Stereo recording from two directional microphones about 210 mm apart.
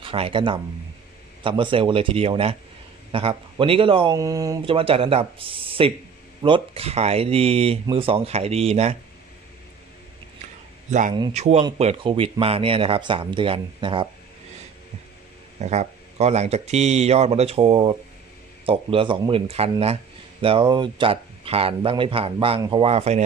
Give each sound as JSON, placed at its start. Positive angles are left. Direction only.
{"t": 0.0, "sound": "speech", "side_deg": -25}
{"t": 10.9, "sound": "speech", "side_deg": -35}
{"t": 15.6, "sound": "speech", "side_deg": -30}